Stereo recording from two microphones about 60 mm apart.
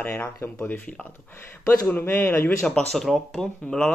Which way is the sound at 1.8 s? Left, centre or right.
Left.